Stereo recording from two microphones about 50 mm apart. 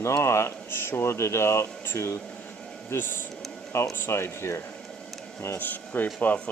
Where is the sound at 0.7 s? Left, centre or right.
Left.